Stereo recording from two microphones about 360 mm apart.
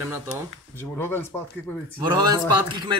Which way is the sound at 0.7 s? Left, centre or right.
Centre.